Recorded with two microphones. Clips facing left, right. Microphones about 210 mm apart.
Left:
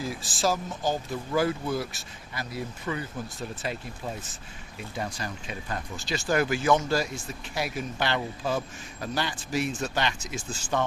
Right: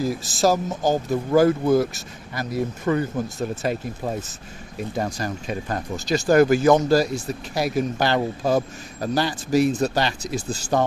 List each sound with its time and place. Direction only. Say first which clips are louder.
0.0 s speech: right 8 dB; 40° right (ahead or behind)